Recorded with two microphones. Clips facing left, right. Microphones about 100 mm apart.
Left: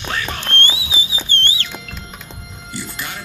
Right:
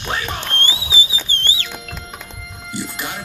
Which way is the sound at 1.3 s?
5° right (ahead or behind).